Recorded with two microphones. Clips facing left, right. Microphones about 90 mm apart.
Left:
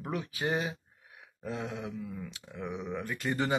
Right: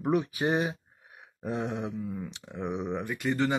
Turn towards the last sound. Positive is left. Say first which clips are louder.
# right 4 dB
turn(degrees=5)  # may be behind; listen again after turning